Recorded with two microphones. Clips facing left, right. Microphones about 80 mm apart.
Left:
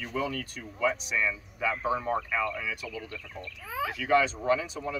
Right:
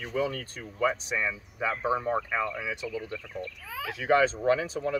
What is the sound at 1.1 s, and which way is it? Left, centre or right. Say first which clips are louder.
Speech: left 1 dB; right.